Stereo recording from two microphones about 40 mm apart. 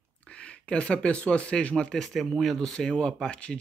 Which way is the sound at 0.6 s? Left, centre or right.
Left.